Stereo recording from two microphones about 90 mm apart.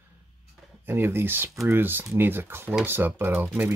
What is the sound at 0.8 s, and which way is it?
Speech, 25° right (ahead or behind).